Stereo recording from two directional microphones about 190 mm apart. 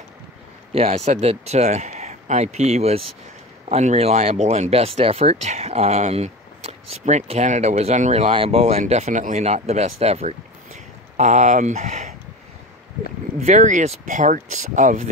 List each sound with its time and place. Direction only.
0.7 s speech: 35° right (ahead or behind)
13.4 s speech: 40° right (ahead or behind)